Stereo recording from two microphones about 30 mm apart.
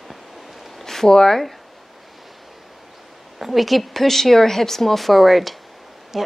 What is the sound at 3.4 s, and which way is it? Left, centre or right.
A woman's voice, centre.